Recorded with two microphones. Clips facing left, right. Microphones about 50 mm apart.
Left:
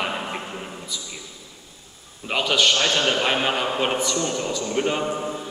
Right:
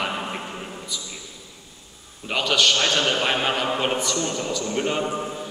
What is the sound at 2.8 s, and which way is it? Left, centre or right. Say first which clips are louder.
A man's voice: left 1 dB; centre.